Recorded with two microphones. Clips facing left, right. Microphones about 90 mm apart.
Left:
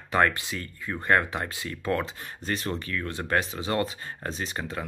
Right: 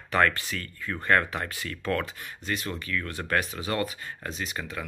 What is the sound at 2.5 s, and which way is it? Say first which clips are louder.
Speech: left 1 dB; 35° left (ahead or behind).